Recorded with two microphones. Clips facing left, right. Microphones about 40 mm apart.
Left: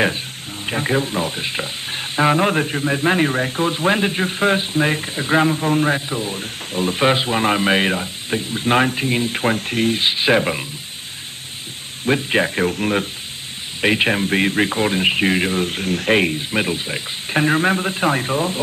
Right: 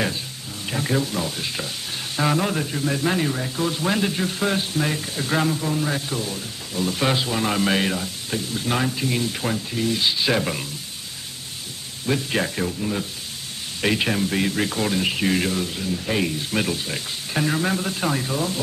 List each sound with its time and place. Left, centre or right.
0.7 s speech: left
5.9 s speech: left
9.6 s speech: left
12.1 s speech: left
12.7 s speech: left
13.7 s speech: left
15.6 s speech: left
16.2 s speech: left
16.5 s speech: left